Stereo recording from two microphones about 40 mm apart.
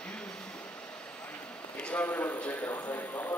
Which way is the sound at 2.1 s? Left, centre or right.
Left.